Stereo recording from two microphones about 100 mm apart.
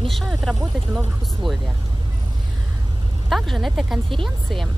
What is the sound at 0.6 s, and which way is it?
Speech, 10° right (ahead or behind).